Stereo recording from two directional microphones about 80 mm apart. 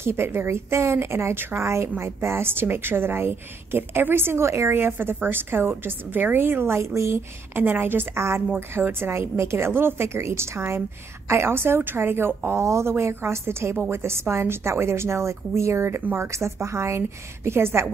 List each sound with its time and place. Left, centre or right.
0.0 s a woman's voice: right
7.5 s a woman's voice: right